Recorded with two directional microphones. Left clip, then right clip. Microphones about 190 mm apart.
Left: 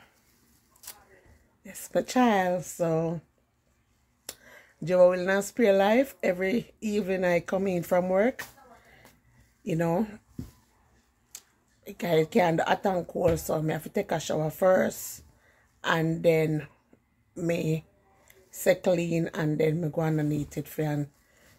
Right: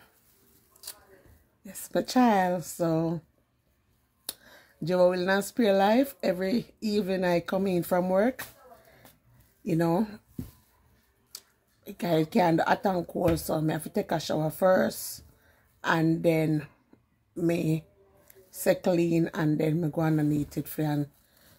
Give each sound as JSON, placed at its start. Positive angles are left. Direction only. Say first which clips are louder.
{"t": 1.6, "sound": "speech", "louder": "left 1 dB", "side_deg": -10}
{"t": 4.3, "sound": "speech", "louder": "right 2 dB", "side_deg": -10}
{"t": 9.6, "sound": "speech", "louder": "right 1 dB", "side_deg": -15}
{"t": 11.8, "sound": "speech", "louder": "left 2 dB", "side_deg": -10}